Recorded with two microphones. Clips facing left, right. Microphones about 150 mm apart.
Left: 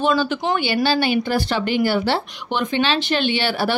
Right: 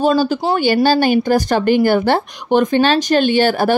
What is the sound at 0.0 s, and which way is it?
Speech, 40° right (ahead or behind).